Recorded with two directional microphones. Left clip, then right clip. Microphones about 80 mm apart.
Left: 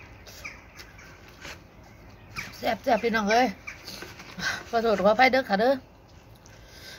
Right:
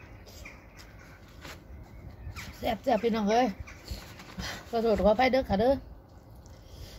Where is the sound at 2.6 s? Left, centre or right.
Right.